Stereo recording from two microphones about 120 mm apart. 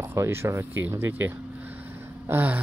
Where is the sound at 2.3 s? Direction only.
15° right (ahead or behind).